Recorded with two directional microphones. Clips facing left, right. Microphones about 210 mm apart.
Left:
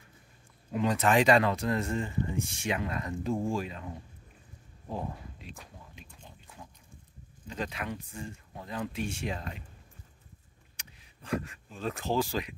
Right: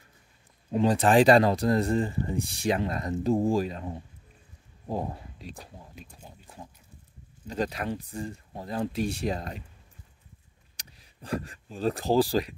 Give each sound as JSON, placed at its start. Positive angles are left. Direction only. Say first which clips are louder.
{"t": 0.7, "sound": "speech", "louder": "right 4 dB", "side_deg": -30}
{"t": 4.8, "sound": "a sound", "louder": "right 5 dB", "side_deg": -40}
{"t": 7.4, "sound": "speech", "louder": "right 6 dB", "side_deg": -40}
{"t": 10.8, "sound": "speech", "louder": "right 5 dB", "side_deg": -35}